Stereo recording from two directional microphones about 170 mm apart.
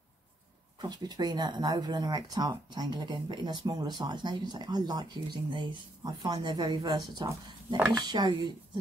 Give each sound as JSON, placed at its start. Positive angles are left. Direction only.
{"t": 0.7, "sound": "speech", "side_deg": -25}